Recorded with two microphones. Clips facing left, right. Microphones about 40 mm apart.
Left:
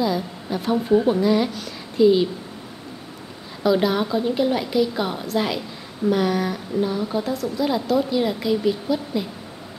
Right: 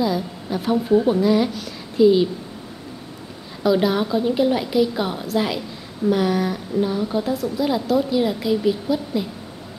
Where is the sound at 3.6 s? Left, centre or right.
Centre.